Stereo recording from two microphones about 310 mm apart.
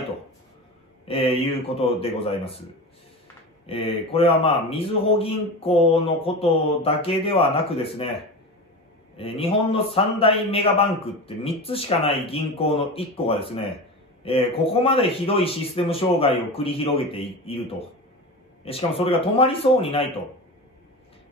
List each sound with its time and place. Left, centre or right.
1.0 s a man's voice: centre
3.6 s a man's voice: centre
9.1 s a man's voice: centre